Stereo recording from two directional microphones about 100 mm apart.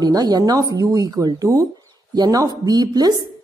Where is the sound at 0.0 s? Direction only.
40° right (ahead or behind).